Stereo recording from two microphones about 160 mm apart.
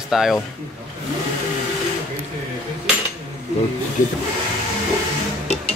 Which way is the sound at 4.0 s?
55° left (ahead or behind).